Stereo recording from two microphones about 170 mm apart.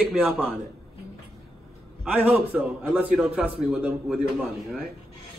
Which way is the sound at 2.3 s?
5° right (ahead or behind).